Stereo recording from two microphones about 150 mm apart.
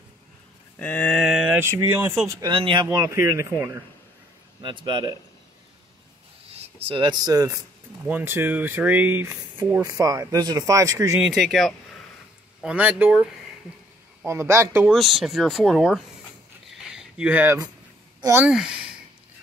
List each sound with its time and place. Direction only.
0.7 s a sound: 10° left (ahead or behind)
1.1 s a sound: 5° right (ahead or behind)
1.6 s speech: 20° right (ahead or behind)
2.5 s speech: 35° right (ahead or behind)
2.9 s speech: 20° right (ahead or behind)
4.6 s speech: 30° right (ahead or behind)
6.8 s speech: 35° right (ahead or behind)
8.0 s speech: 15° right (ahead or behind)
11.1 s speech: centre (ahead or behind)
12.6 s speech: 10° right (ahead or behind)
14.9 s speech: centre (ahead or behind)
16.9 s a sound: 10° right (ahead or behind)
18.2 s speech: 15° right (ahead or behind)
18.5 s speech: 5° right (ahead or behind)